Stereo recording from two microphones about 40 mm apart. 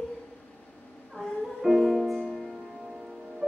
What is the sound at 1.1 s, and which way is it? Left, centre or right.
Music, centre.